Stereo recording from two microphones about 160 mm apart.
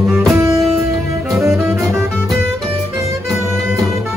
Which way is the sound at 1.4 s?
15° right (ahead or behind).